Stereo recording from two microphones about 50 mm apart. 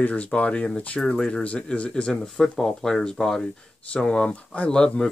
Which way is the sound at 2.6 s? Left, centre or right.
Centre.